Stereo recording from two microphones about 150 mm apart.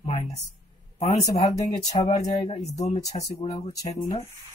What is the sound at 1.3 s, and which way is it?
Speech, 20° left (ahead or behind).